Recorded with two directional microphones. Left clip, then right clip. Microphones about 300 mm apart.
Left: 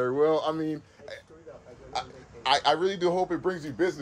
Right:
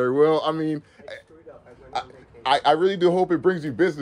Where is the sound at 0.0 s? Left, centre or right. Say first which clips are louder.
Right 5 dB; right.